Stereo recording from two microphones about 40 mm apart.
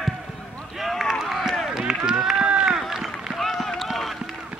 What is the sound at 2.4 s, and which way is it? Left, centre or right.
Run, right.